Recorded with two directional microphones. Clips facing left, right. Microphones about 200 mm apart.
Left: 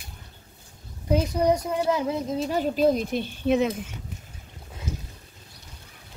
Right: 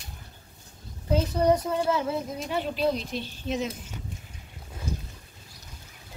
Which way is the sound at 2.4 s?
40° left (ahead or behind).